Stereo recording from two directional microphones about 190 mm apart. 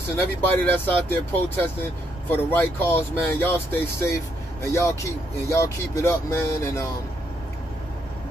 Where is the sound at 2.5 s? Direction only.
10° left (ahead or behind).